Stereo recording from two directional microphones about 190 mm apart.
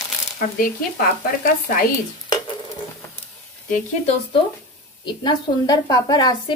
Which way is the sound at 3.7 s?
35° left (ahead or behind).